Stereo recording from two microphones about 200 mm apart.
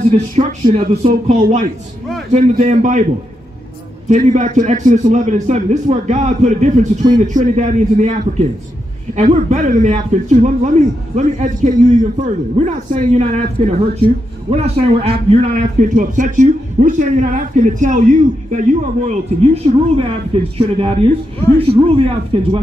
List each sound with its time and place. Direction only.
0.4 s a man's voice: 40° right (ahead or behind)
4.1 s a man's voice: 35° right (ahead or behind)